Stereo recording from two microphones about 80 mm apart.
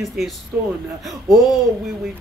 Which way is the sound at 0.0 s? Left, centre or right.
Centre.